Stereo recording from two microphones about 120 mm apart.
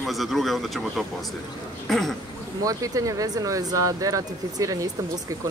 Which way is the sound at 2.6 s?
30° right (ahead or behind).